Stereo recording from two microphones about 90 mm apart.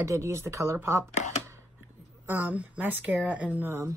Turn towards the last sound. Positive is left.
turn(degrees=-35)  # may be behind; listen again after turning